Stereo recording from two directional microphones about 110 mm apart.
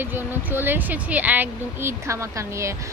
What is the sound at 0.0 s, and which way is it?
Speech, 20° right (ahead or behind).